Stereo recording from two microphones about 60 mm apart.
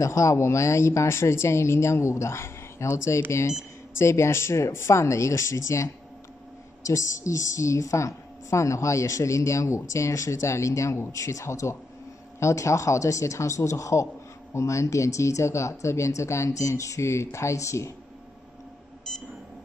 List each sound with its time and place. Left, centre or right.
0.0 s speech: left
6.9 s a woman's voice: left